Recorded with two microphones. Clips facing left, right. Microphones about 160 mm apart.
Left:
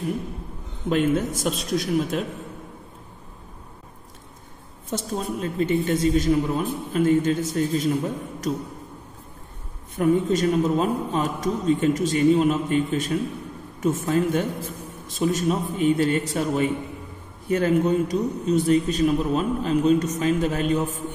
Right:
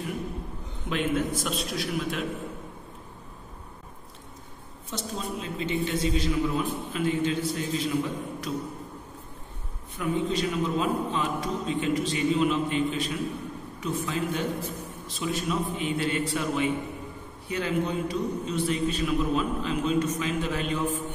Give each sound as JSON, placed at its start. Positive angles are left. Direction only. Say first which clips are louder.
{"t": 0.8, "sound": "a woman's voice", "louder": "left 6 dB", "side_deg": 40}
{"t": 4.8, "sound": "a woman's voice", "louder": "left 6 dB", "side_deg": 50}
{"t": 9.9, "sound": "a woman's voice", "louder": "left 7 dB", "side_deg": 45}